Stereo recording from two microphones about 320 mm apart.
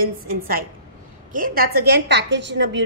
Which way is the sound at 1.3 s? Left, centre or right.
Right.